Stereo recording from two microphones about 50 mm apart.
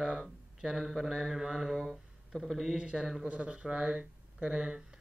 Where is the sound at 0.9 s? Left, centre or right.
Centre.